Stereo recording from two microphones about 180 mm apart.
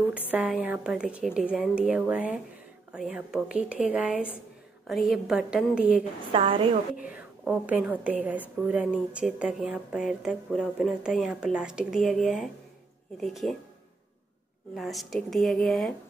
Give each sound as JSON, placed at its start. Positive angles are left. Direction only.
{"t": 0.1, "sound": "a woman's voice", "side_deg": -5}
{"t": 6.2, "sound": "a woman's voice", "side_deg": -30}
{"t": 7.0, "sound": "a woman's voice", "side_deg": -5}
{"t": 14.8, "sound": "a woman's voice", "side_deg": 0}